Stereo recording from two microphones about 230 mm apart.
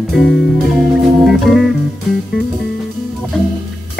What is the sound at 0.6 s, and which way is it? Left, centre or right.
Music, centre.